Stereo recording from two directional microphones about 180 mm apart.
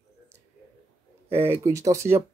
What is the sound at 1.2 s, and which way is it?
Speech, 15° right (ahead or behind).